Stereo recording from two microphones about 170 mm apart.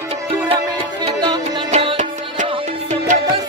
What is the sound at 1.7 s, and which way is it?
Music, 40° right (ahead or behind).